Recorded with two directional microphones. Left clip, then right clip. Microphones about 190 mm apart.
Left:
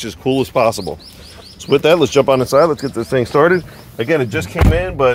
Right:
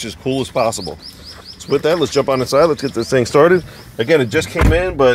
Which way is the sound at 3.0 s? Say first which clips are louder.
Right 1 dB; 10° right (ahead or behind).